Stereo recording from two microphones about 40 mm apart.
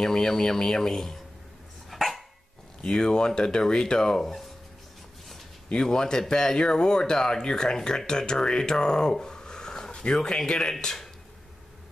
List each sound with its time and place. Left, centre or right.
0.0 s speech: centre
1.9 s dog: centre
2.8 s speech: centre
5.7 s speech: centre